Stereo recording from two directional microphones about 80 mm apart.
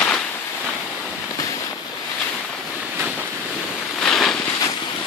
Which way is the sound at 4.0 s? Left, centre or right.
Centre.